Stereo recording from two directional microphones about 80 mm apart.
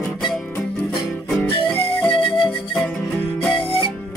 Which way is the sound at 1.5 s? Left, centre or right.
Left.